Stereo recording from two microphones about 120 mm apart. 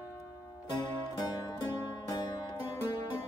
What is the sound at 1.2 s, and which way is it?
Music, 35° left (ahead or behind).